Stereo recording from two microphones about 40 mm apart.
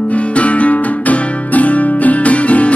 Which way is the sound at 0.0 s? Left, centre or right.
Left.